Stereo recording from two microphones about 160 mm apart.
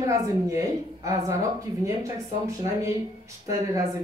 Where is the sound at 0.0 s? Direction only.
20° right (ahead or behind).